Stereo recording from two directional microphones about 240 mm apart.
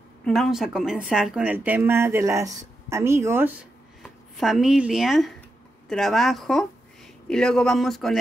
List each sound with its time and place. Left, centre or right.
0.2 s speech: centre